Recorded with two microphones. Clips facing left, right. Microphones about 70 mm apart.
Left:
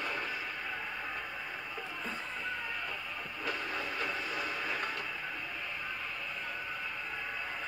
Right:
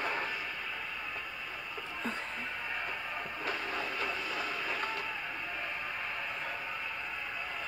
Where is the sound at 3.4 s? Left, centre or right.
Right.